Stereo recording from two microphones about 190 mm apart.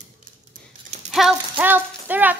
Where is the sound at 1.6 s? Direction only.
10° right (ahead or behind).